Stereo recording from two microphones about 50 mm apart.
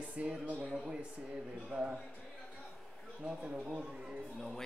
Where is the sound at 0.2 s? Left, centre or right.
Right.